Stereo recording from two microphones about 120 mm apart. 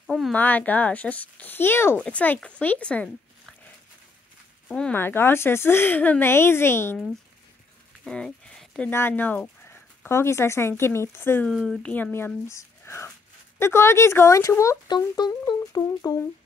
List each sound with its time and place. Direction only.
0.0 s a sound: centre (ahead or behind)
0.3 s speech: 15° left (ahead or behind)
4.6 s speech: 10° left (ahead or behind)
8.0 s a sound: 5° left (ahead or behind)
8.9 s speech: 15° left (ahead or behind)
11.4 s speech: centre (ahead or behind)
11.9 s speech: 15° left (ahead or behind)